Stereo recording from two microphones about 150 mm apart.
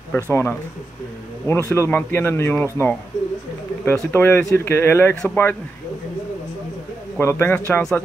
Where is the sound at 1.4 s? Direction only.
20° left (ahead or behind).